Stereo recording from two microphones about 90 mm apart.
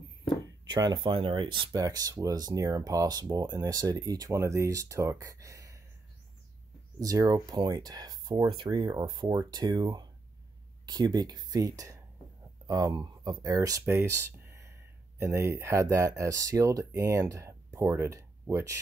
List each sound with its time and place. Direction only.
0.7 s speech: 50° right (ahead or behind)
1.8 s speech: 45° right (ahead or behind)
7.0 s speech: 40° right (ahead or behind)